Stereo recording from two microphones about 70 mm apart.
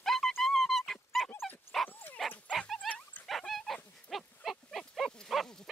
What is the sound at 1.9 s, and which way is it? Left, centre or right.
Dog, left.